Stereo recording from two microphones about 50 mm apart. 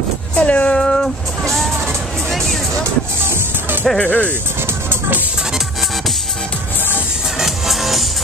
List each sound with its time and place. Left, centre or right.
0.4 s speech: left
0.7 s music: centre
3.2 s music: right
4.0 s speech: left
7.3 s music: centre